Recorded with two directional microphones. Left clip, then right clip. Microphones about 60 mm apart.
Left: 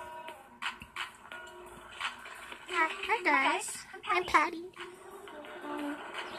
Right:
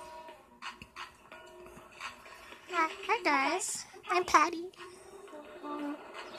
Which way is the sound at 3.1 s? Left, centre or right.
Right.